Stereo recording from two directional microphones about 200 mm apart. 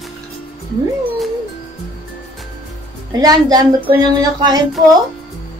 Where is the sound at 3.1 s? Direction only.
20° right (ahead or behind).